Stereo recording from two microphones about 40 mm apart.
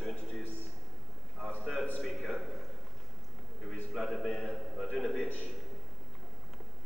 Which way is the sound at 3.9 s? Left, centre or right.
Centre.